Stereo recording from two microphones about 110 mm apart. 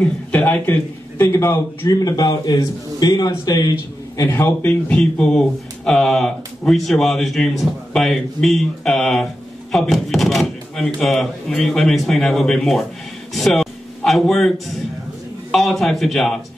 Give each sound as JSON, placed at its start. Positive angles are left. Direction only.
{"t": 0.0, "sound": "a man's voice", "side_deg": 10}
{"t": 1.9, "sound": "a man's voice", "side_deg": 35}
{"t": 4.2, "sound": "speech", "side_deg": 20}
{"t": 13.3, "sound": "a sound", "side_deg": 0}
{"t": 15.5, "sound": "speech", "side_deg": 0}